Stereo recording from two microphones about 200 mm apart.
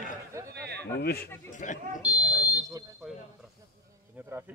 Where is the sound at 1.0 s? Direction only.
50° left (ahead or behind).